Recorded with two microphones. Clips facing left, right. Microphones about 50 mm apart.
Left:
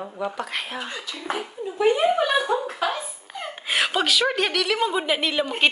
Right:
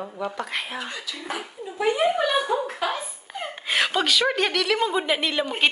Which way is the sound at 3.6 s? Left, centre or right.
Centre.